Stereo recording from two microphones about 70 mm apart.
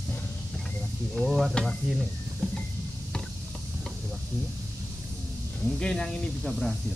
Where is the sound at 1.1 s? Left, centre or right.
Centre.